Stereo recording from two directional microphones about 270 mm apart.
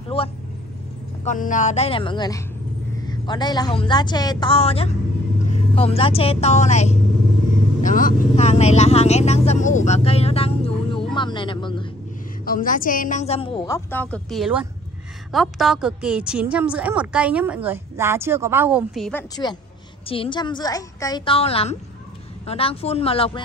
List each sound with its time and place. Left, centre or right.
0.1 s a woman's voice: left
11.1 s music: centre
12.4 s a woman's voice: left; by 19.2 s centre
20.1 s a woman's voice: centre